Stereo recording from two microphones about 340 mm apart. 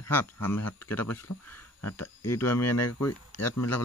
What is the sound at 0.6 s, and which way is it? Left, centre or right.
Speech, left.